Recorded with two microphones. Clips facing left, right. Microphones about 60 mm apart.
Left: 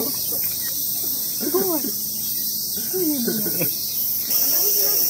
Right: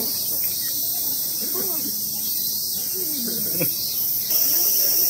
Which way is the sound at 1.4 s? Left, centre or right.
Left.